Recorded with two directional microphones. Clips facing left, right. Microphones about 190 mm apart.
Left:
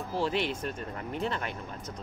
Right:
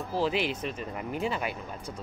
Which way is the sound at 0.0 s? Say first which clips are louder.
Right 2 dB; centre (ahead or behind).